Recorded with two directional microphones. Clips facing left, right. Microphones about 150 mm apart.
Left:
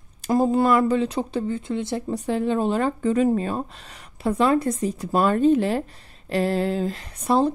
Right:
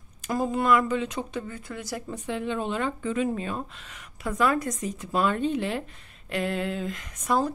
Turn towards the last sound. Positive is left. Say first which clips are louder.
# left 5 dB
turn(degrees=30)  # may be behind; listen again after turning